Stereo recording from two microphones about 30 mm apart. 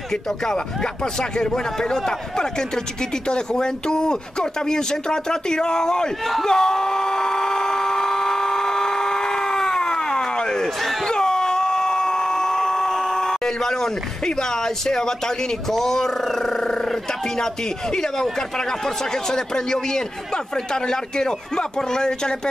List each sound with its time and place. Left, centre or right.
1.3 s a man's voice: left
6.4 s a sound: centre
17.9 s speech: left
19.2 s speech: left